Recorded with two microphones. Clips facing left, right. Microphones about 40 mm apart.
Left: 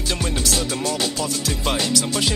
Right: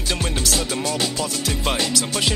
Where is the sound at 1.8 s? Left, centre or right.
Right.